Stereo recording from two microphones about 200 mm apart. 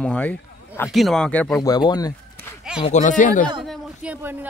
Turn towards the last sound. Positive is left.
turn(degrees=-10)  # may be behind; listen again after turning